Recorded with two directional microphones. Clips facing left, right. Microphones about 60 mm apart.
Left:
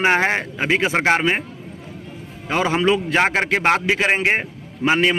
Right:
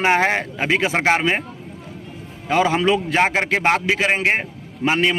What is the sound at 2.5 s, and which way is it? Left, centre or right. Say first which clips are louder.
A man's voice: right 1 dB; left.